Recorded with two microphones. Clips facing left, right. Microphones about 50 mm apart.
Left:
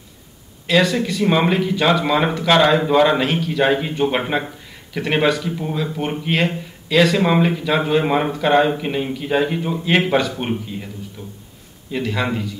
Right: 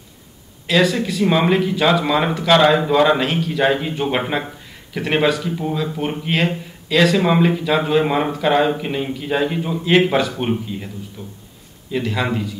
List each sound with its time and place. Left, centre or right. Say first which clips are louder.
0.7 s speech: even; centre
11.2 s speech: even; left
11.9 s speech: right 1 dB; centre